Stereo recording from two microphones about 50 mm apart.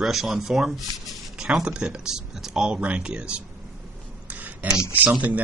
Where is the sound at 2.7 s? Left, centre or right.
Right.